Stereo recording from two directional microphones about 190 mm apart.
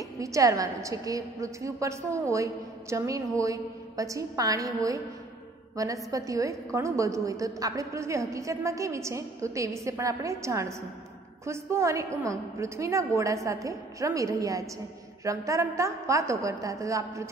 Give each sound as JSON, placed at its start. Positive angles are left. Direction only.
{"t": 0.0, "sound": "a woman's voice", "side_deg": -15}